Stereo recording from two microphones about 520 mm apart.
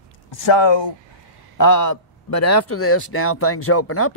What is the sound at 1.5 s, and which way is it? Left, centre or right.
A man's voice, left.